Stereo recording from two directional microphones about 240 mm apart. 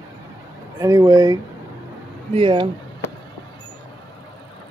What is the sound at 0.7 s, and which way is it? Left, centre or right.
Speech, centre.